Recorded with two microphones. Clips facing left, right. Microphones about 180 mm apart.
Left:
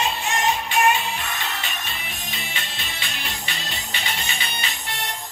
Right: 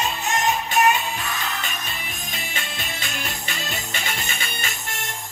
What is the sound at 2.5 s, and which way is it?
Music, 45° right (ahead or behind).